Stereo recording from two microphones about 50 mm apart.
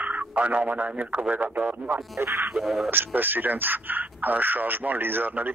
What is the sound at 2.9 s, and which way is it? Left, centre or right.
Speech, right.